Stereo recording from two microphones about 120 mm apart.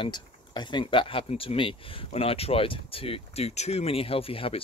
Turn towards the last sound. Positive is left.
turn(degrees=50)  # may be behind; listen again after turning